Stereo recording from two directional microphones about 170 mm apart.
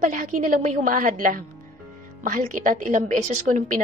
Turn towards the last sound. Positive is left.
turn(degrees=-50)  # may be behind; listen again after turning